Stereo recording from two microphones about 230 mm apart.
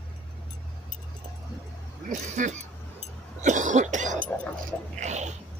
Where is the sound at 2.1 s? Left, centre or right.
Right.